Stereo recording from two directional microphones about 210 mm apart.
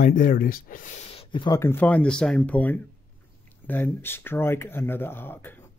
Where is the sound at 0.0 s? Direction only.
40° left (ahead or behind).